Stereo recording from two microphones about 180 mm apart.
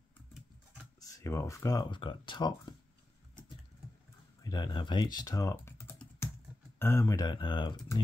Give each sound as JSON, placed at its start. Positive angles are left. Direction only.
{"t": 0.9, "sound": "speech", "side_deg": 20}
{"t": 4.4, "sound": "speech", "side_deg": 20}